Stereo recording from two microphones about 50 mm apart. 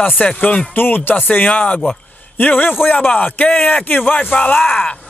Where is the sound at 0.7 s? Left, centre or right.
Left.